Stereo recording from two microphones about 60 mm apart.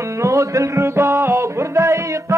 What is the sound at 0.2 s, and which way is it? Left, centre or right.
Music, right.